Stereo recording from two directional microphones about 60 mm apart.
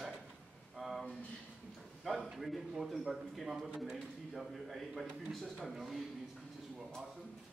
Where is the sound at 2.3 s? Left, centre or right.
Centre.